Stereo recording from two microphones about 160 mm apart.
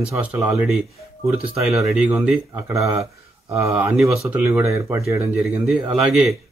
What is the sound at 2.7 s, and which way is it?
Speech, 20° right (ahead or behind).